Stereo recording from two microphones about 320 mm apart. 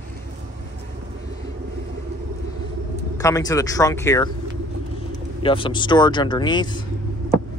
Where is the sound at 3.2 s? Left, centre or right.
Centre.